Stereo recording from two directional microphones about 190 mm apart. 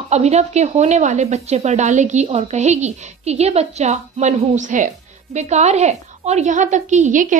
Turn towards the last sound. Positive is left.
turn(degrees=-40)  # may be behind; listen again after turning